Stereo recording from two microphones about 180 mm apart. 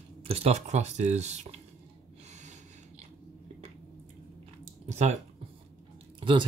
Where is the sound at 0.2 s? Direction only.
35° right (ahead or behind).